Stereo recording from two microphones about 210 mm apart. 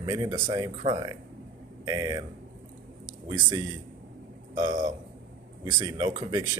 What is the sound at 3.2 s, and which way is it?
Speech, 20° right (ahead or behind).